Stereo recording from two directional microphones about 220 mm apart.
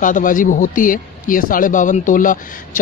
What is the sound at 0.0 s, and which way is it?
Speech, 35° left (ahead or behind).